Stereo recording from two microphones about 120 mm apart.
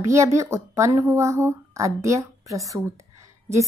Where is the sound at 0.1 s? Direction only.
25° right (ahead or behind).